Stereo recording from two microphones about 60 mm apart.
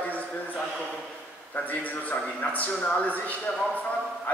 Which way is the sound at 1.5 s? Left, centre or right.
Left.